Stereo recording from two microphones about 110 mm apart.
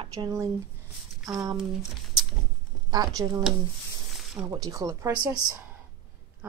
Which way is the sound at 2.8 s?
35° right (ahead or behind).